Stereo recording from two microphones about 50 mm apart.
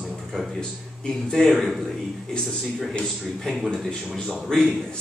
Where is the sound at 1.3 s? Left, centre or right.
Centre.